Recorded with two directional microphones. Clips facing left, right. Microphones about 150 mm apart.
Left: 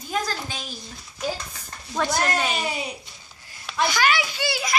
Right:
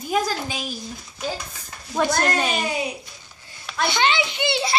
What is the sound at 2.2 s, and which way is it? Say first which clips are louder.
Speech: right 2 dB; centre (ahead or behind).